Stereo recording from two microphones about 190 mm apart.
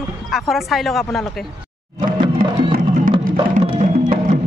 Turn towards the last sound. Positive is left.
turn(degrees=-35)  # may be behind; listen again after turning